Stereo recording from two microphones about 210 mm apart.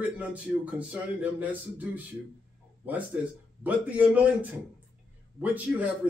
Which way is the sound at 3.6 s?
5° right (ahead or behind).